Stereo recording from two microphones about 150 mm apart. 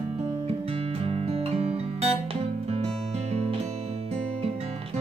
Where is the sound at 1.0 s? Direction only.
40° right (ahead or behind).